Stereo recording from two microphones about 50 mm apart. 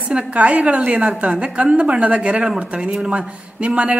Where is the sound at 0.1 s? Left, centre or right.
Right.